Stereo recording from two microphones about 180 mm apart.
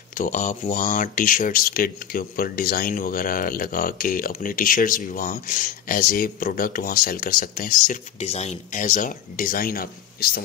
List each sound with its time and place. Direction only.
0.1 s speech: 45° left (ahead or behind)